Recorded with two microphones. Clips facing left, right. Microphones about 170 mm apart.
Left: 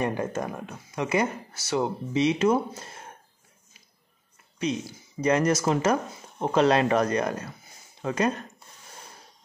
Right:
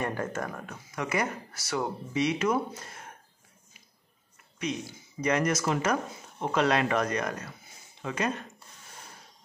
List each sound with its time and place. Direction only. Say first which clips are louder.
0.0 s speech: left 4 dB; 20° left (ahead or behind)
5.2 s speech: left 4 dB; 30° left (ahead or behind)